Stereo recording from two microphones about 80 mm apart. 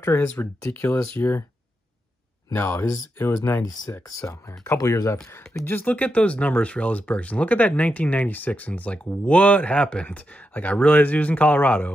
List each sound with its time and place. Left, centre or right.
0.0 s speech: left
2.5 s speech: left
4.1 s speech: left
5.3 s speech: left